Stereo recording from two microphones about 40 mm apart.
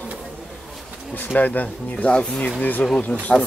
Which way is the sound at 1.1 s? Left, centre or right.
Left.